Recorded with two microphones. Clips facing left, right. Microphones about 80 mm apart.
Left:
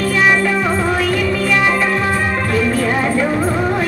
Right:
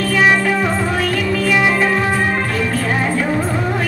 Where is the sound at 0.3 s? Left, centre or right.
Centre.